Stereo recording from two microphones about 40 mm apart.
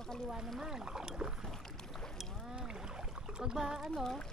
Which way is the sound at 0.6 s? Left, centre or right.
Centre.